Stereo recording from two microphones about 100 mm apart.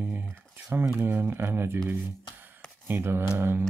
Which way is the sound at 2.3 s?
20° right (ahead or behind).